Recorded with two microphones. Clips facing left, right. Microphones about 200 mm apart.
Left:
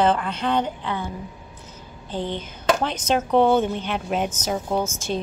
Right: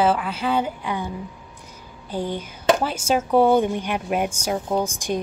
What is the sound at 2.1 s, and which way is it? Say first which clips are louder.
A woman's voice: right 1 dB; 10° right (ahead or behind).